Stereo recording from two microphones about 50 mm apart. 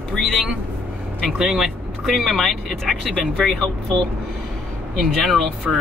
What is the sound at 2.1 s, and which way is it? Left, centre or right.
Speech, centre.